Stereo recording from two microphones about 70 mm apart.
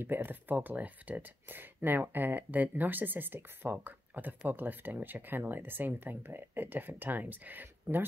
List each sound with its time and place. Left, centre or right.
0.0 s speech: right